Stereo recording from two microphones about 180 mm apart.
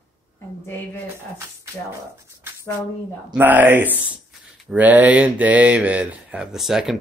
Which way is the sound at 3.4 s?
10° right (ahead or behind).